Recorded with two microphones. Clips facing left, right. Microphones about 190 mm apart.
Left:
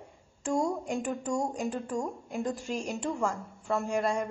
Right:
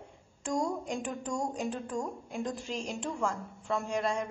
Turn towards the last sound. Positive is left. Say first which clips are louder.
# left 3 dB
turn(degrees=10)  # may be behind; listen again after turning